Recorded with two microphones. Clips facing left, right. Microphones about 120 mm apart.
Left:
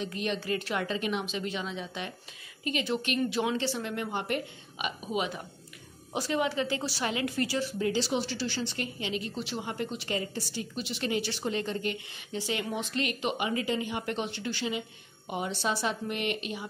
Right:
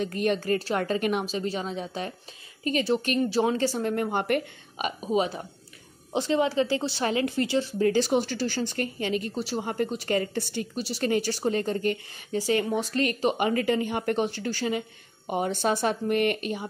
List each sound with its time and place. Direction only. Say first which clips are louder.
0.0 s a woman's voice: right 7 dB; 45° right (ahead or behind)
1.2 s a woman's voice: right 4 dB; 35° right (ahead or behind)
7.8 s a woman's voice: right 7 dB; 50° right (ahead or behind)
10.8 s a woman's voice: right 5 dB; 40° right (ahead or behind)
13.5 s a woman's voice: right 6 dB; 55° right (ahead or behind)